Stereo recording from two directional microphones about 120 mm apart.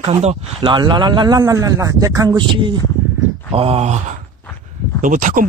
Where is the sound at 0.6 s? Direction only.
40° right (ahead or behind).